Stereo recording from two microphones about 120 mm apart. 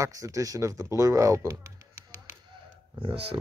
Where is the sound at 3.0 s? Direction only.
45° right (ahead or behind).